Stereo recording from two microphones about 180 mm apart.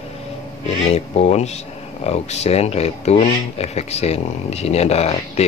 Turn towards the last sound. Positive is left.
turn(degrees=35)  # may be behind; listen again after turning